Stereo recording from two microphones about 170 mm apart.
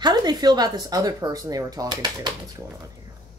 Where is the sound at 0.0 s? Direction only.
25° right (ahead or behind).